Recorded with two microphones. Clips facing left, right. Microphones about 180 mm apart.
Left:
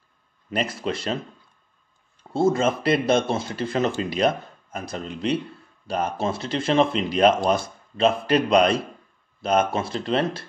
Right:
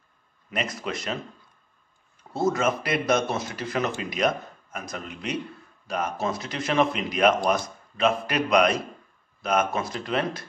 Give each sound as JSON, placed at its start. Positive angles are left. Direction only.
{"t": 0.5, "sound": "speech", "side_deg": 30}
{"t": 2.3, "sound": "speech", "side_deg": 30}